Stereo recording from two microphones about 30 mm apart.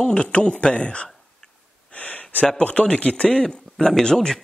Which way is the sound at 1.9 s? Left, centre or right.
Left.